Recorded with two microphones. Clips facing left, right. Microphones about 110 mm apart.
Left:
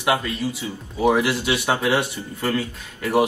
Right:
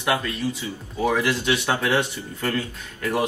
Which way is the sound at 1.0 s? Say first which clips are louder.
Left 3 dB; 15° left (ahead or behind).